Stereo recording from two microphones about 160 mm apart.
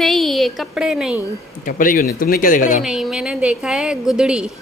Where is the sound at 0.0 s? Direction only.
Centre (ahead or behind).